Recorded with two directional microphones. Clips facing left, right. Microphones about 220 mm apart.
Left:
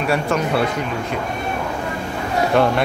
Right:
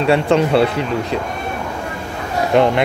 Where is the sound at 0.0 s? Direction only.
25° right (ahead or behind).